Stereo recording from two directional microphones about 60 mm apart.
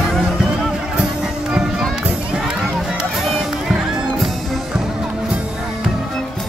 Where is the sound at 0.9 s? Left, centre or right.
Centre.